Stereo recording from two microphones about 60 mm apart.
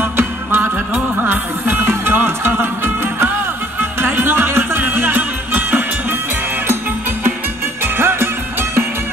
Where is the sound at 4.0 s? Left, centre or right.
Right.